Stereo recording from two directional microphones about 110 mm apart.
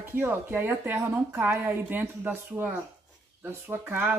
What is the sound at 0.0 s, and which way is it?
A woman's voice, 20° right (ahead or behind).